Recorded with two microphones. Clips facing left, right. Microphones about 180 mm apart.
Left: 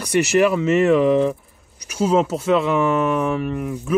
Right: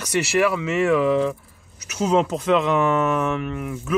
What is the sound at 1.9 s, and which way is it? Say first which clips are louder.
Speech: left 2 dB; 10° left (ahead or behind).